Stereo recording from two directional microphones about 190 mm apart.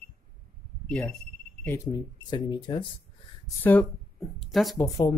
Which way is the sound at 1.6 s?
15° left (ahead or behind).